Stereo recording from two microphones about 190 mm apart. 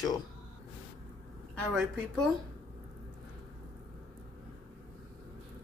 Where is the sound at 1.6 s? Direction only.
5° left (ahead or behind).